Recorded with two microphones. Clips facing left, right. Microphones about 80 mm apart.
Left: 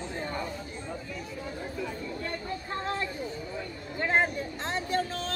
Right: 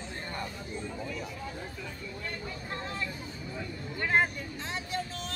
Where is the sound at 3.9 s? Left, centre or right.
Left.